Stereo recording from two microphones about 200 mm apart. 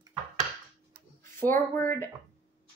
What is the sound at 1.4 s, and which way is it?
Speech, 10° left (ahead or behind).